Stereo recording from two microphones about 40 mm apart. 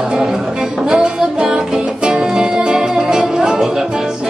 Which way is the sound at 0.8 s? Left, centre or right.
Centre.